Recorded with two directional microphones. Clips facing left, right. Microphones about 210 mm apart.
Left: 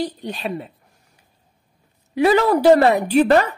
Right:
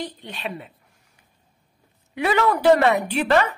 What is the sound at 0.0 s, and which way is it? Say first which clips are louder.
Speech: left 6 dB; 40° left (ahead or behind).